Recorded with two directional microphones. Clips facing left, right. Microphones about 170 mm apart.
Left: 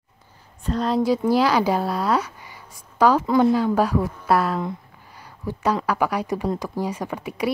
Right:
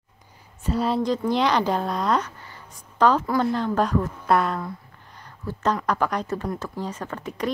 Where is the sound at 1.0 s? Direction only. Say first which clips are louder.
Left 3 dB; 5° left (ahead or behind).